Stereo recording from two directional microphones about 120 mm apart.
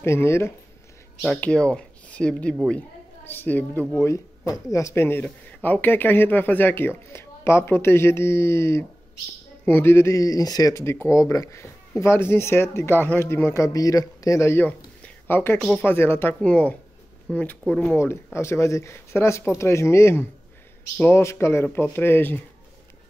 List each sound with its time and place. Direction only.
0.0 s speech: 20° left (ahead or behind)
1.4 s speech: 10° left (ahead or behind)
15.0 s a sound: 20° left (ahead or behind)
15.6 s speech: 10° left (ahead or behind)
15.9 s speech: 20° left (ahead or behind)
17.9 s speech: 20° left (ahead or behind)